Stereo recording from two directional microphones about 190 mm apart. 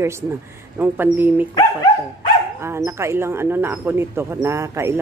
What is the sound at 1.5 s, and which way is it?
Speech, 20° left (ahead or behind).